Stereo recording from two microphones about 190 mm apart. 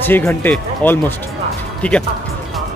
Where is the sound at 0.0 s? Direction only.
10° left (ahead or behind).